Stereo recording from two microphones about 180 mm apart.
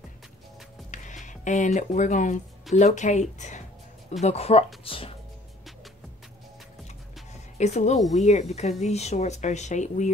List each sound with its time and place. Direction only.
0.9 s speech: 45° left (ahead or behind)
7.5 s speech: 40° left (ahead or behind)